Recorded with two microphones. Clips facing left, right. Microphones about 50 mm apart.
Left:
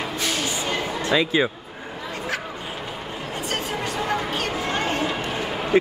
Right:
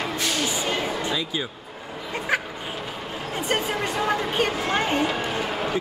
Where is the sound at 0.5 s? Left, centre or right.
Centre.